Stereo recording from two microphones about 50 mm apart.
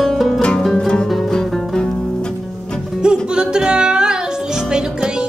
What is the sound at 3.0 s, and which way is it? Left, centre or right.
Music, centre.